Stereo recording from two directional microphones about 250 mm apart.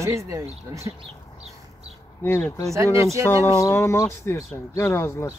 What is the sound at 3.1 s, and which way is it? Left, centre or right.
Speech, centre.